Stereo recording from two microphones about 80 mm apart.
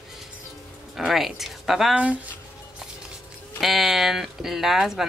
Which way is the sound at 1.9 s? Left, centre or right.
Centre.